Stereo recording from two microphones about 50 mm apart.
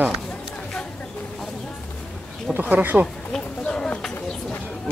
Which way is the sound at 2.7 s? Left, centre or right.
Right.